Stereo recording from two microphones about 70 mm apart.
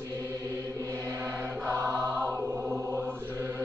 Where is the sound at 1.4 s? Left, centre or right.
Right.